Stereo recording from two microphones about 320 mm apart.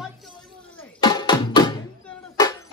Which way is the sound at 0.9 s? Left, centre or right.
Centre.